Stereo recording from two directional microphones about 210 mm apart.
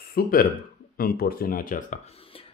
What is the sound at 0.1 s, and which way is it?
Speech, 45° left (ahead or behind).